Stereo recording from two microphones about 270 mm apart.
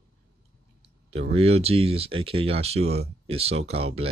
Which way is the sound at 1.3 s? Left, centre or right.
Right.